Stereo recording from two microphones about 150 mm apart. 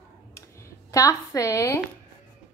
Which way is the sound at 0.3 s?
20° left (ahead or behind).